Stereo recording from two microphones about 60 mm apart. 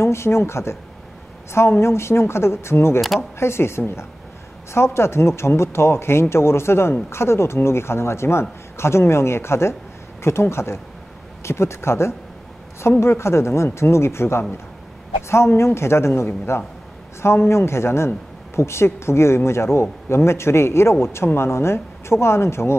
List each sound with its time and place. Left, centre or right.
0.0 s speech: left